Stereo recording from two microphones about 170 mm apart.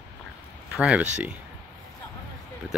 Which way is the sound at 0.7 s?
5° right (ahead or behind).